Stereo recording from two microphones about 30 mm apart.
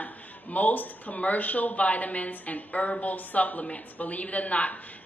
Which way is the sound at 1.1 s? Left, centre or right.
Left.